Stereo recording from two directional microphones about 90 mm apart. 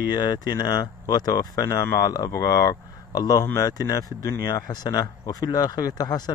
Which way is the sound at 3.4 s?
35° left (ahead or behind).